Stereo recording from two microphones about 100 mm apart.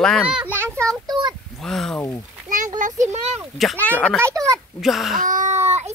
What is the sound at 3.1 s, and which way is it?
Speech, 90° right.